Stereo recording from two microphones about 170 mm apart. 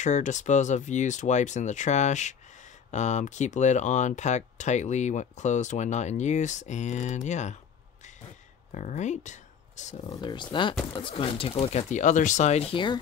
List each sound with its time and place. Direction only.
0.0 s speech: 45° left (ahead or behind)
8.7 s speech: 45° left (ahead or behind)
10.0 s speech: 25° left (ahead or behind); by 12.6 s 45° left (ahead or behind)